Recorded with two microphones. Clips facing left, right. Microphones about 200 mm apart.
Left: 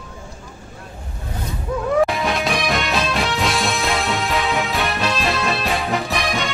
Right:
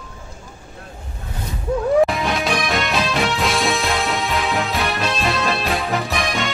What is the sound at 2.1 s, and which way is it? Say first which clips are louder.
Music: even; centre (ahead or behind).